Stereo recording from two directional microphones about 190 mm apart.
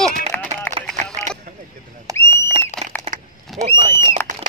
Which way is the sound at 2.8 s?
Centre (ahead or behind).